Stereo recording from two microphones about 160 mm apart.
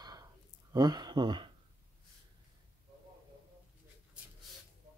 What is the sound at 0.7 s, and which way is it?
Speech, 25° right (ahead or behind).